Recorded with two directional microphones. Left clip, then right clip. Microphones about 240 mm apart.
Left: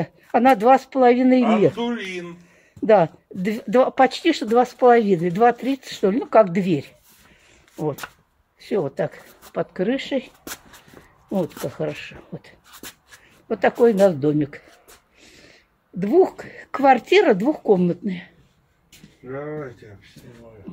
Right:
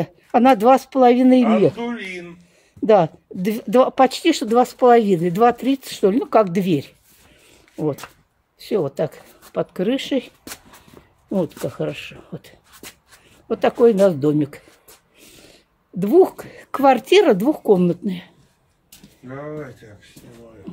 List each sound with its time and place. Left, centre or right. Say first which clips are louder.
0.0 s speech: right 2 dB; right
2.8 s speech: right 1 dB; centre
8.6 s speech: right 2 dB; centre
11.6 s speech: right 2 dB; centre